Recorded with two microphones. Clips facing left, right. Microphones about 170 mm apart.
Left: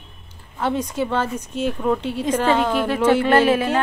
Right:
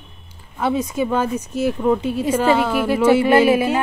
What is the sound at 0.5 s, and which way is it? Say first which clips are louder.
Speech: right 2 dB; 10° right (ahead or behind).